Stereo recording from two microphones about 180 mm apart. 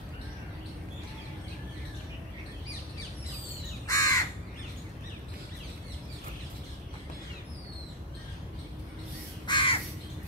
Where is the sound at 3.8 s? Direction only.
20° left (ahead or behind).